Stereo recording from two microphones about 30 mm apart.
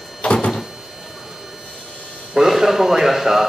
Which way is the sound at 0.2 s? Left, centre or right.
Left.